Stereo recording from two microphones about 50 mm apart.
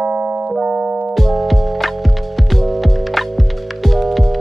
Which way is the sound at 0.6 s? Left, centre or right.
Right.